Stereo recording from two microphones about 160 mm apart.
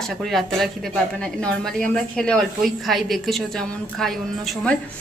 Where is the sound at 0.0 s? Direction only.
Centre (ahead or behind).